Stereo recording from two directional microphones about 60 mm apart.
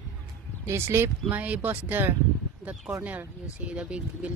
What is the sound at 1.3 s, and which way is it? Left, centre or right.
Speech, right.